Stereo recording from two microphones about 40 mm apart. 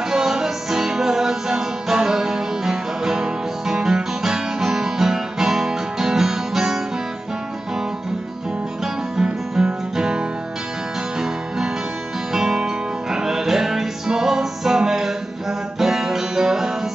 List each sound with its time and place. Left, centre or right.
0.1 s music: centre
9.1 s music: centre
11.1 s guitar: centre
12.3 s music: centre
14.9 s a sound: centre
15.8 s music: centre